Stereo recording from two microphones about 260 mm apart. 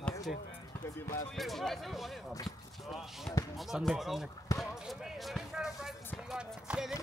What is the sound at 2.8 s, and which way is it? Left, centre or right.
Basketball bounce, centre.